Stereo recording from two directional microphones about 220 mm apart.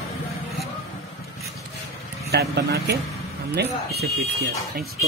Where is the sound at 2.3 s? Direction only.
50° right (ahead or behind).